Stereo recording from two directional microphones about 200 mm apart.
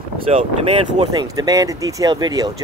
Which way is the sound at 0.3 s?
30° right (ahead or behind).